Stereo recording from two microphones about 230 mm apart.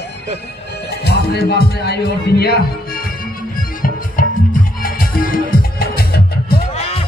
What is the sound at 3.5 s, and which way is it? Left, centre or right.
Music, left.